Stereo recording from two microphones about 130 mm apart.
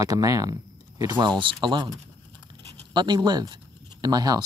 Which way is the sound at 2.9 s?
35° right (ahead or behind).